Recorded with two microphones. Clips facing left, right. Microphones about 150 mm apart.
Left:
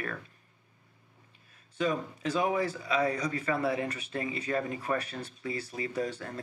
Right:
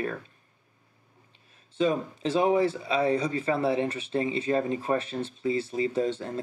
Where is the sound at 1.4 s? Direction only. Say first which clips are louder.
Right 5 dB; 25° right (ahead or behind).